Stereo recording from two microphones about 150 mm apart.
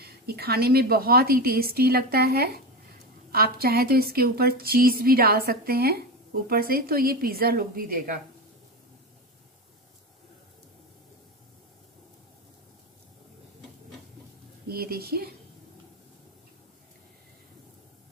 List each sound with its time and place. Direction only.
0.0 s speech: 90° right; by 8.2 s 70° right (ahead or behind)
14.7 s speech: 90° right